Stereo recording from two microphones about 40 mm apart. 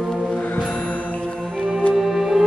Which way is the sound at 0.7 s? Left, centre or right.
Left.